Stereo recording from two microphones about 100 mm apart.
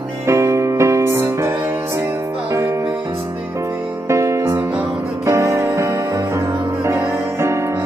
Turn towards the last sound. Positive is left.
turn(degrees=-30)  # may be behind; listen again after turning